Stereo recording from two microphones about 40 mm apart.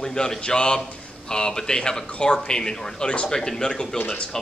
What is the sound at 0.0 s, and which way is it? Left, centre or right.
Speech, centre.